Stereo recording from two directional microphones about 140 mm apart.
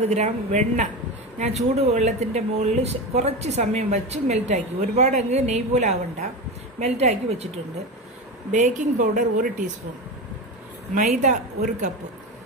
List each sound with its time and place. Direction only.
0.0 s speech: 55° right (ahead or behind)
8.5 s speech: 60° right (ahead or behind)
11.0 s speech: 65° right (ahead or behind)